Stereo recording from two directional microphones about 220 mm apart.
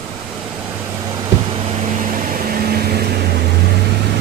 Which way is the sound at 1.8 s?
35° right (ahead or behind).